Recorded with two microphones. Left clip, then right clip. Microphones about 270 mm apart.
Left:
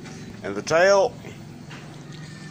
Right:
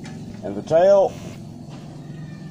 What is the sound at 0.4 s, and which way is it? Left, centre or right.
Speech, left.